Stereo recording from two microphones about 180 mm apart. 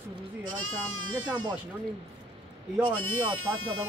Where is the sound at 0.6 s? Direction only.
90° right.